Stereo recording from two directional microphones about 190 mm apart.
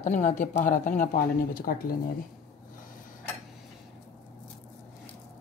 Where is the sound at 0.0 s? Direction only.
40° left (ahead or behind).